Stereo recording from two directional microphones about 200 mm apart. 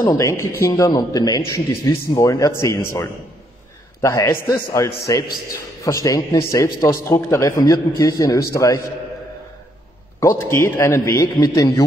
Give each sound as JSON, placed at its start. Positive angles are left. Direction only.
{"t": 0.0, "sound": "a man's voice", "side_deg": 15}
{"t": 4.0, "sound": "a man's voice", "side_deg": 15}
{"t": 10.2, "sound": "a man's voice", "side_deg": 15}